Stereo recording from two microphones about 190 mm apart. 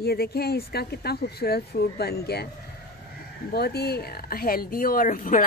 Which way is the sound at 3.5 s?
55° left (ahead or behind).